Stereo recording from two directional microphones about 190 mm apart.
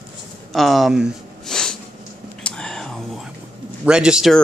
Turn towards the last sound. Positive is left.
turn(degrees=0)  # may be behind; listen again after turning